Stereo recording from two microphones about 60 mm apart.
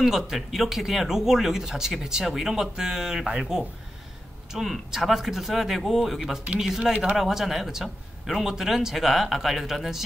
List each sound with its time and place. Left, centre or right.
0.0 s a man's voice: centre
6.9 s speech: right
7.2 s a man's voice: centre